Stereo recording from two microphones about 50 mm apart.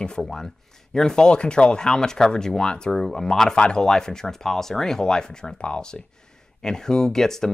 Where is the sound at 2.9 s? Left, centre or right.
Centre.